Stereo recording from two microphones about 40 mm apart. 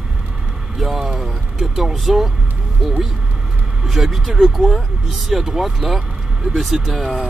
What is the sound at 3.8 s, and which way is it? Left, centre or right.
Speech, centre.